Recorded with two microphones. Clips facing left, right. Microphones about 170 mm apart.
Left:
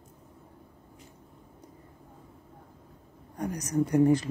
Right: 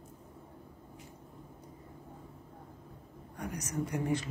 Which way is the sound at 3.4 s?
35° left (ahead or behind).